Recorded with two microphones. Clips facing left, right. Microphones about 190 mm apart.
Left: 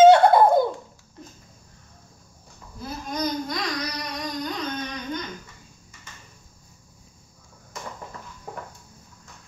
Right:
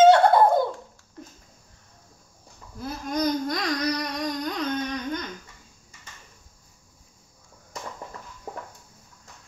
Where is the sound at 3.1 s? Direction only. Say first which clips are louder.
Right 3 dB; 50° right (ahead or behind).